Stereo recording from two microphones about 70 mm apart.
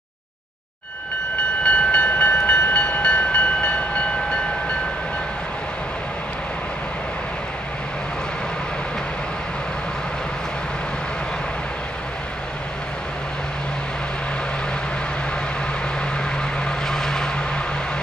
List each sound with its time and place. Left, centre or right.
1.6 s train: centre
16.3 s vehicle: centre